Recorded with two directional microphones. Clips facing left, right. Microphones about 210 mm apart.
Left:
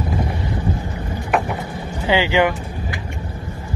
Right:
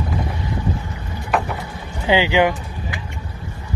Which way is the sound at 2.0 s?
15° right (ahead or behind).